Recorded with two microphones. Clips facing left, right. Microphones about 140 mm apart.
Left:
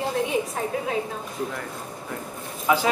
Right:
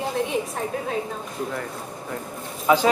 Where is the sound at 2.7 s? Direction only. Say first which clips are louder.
Right 3 dB; 30° right (ahead or behind).